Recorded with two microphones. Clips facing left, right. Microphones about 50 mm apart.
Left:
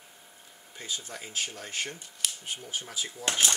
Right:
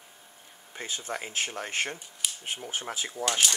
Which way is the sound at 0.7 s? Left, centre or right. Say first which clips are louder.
Right 4 dB; right.